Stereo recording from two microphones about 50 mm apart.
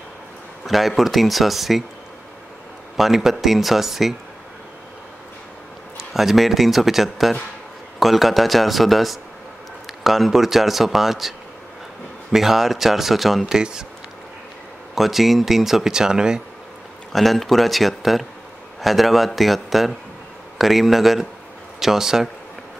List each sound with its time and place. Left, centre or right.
0.7 s speech: centre
3.0 s speech: centre
5.9 s speech: centre
13.6 s speech: centre
15.0 s speech: centre
17.1 s speech: centre